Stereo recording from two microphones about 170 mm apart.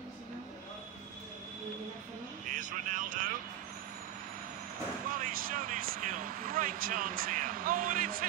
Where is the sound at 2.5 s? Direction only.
50° right (ahead or behind).